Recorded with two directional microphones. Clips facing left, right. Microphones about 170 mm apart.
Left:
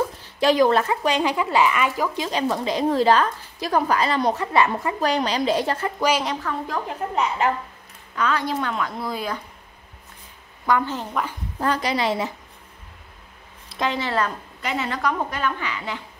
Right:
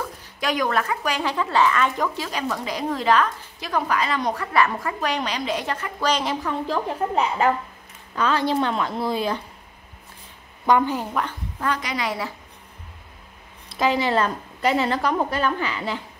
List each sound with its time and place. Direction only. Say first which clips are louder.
0.0 s speech: left 7 dB; 30° left (ahead or behind)
1.3 s speech: even; 10° left (ahead or behind)
2.1 s a woman's voice: left 4 dB; 20° left (ahead or behind)
5.0 s a woman's voice: left 5 dB; 35° left (ahead or behind)
5.9 s speech: left 1 dB; 10° left (ahead or behind)
6.7 s a woman's voice: right 6 dB; 30° right (ahead or behind)
10.7 s a woman's voice: right 3 dB; 10° right (ahead or behind)
11.6 s a woman's voice: left 4 dB; 35° left (ahead or behind)
13.7 s a woman's voice: right 4 dB; 5° right (ahead or behind)
14.0 s a woman's voice: right 3 dB; 25° right (ahead or behind)